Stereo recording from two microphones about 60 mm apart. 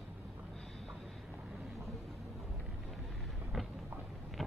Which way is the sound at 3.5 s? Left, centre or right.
Centre.